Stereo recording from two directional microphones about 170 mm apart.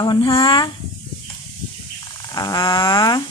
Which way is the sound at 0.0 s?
25° left (ahead or behind).